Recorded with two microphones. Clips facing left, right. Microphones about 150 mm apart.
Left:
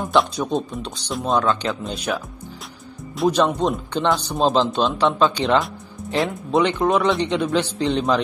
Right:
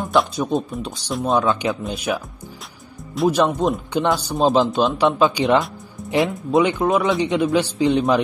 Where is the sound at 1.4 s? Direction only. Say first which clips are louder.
Right 1 dB; 15° right (ahead or behind).